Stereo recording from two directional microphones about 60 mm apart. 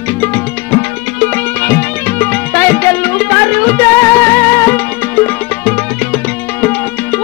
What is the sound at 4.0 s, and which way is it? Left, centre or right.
Music, left.